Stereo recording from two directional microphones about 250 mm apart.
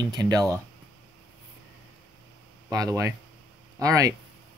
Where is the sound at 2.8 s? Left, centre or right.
Centre.